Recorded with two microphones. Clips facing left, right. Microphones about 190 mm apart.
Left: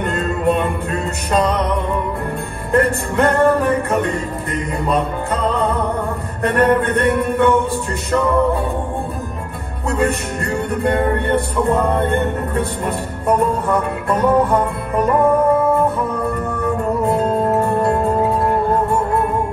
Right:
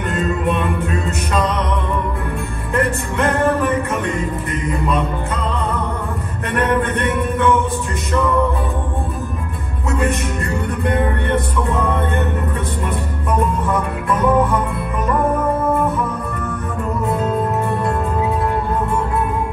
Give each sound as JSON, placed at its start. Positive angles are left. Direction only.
{"t": 0.0, "sound": "music", "side_deg": 35}
{"t": 2.7, "sound": "music", "side_deg": 35}
{"t": 9.8, "sound": "music", "side_deg": 35}
{"t": 16.6, "sound": "music", "side_deg": 35}